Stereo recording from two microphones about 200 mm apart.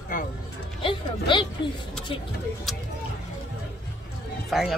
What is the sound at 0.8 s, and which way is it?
Speech, 25° left (ahead or behind).